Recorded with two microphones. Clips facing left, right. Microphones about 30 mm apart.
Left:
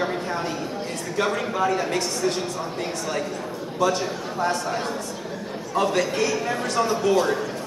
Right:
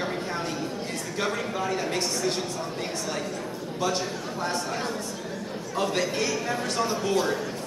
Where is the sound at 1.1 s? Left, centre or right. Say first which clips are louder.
Left 6 dB; centre.